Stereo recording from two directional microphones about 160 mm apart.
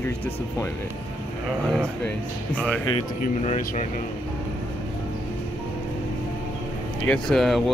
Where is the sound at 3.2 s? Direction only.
45° left (ahead or behind).